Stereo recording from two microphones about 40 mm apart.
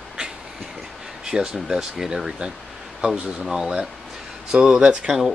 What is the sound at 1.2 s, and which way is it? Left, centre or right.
Speech, centre.